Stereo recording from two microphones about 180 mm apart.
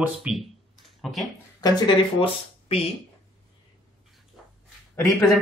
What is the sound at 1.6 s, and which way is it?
Speech, 25° left (ahead or behind).